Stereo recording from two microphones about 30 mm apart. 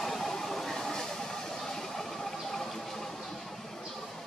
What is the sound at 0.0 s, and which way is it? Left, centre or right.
Train, centre.